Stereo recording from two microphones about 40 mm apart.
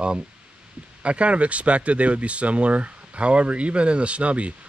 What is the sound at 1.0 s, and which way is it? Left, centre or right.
Speech, right.